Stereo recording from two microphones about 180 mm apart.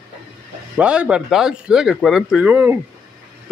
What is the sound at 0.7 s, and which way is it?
Speech, 5° right (ahead or behind).